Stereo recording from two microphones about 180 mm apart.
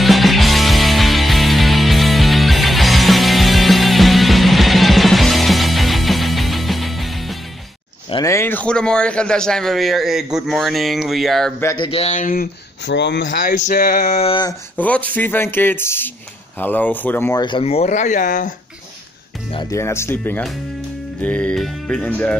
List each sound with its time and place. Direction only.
0.0 s music: centre (ahead or behind)
8.1 s a man's voice: 15° left (ahead or behind); by 11.5 s centre (ahead or behind)
11.6 s speech: 25° left (ahead or behind); by 12.4 s 50° left (ahead or behind)
12.8 s speech: 75° left (ahead or behind)
13.4 s a sound: 45° left (ahead or behind)
14.8 s speech: 10° left (ahead or behind)
17.4 s speech: 30° left (ahead or behind); by 18.5 s 45° left (ahead or behind)
19.5 s speech: 25° left (ahead or behind)
19.8 s speech: 15° left (ahead or behind)